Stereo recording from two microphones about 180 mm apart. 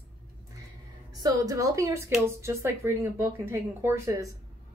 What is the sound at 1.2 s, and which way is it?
A woman's voice, 20° right (ahead or behind).